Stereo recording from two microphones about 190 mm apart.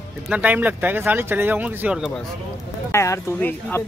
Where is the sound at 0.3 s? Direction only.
10° right (ahead or behind).